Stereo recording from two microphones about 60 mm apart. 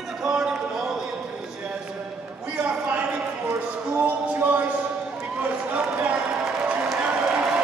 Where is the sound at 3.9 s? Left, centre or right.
Right.